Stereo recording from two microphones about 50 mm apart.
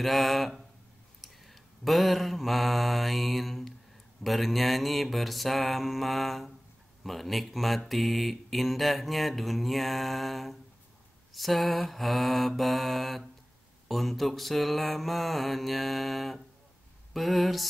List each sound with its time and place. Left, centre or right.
0.0 s speech: centre
1.2 s mantra: centre
4.2 s speech: centre